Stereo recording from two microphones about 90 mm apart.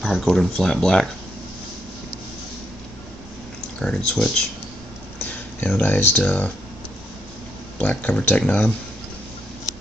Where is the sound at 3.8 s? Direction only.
10° left (ahead or behind).